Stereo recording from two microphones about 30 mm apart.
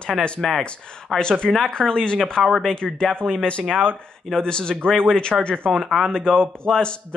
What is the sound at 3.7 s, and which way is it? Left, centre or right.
Speech, right.